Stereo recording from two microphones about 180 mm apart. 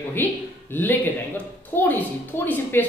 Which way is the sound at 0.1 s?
10° left (ahead or behind).